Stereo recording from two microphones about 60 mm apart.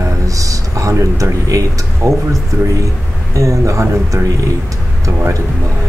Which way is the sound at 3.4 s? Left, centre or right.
Right.